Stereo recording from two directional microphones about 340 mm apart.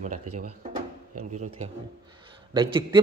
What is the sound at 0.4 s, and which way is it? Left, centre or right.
A man's voice, right.